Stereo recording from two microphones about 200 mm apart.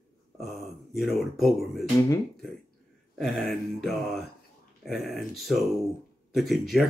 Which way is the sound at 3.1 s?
Centre (ahead or behind).